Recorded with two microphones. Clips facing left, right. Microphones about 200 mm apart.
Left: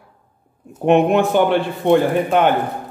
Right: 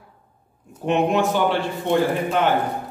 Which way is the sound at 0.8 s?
55° left (ahead or behind).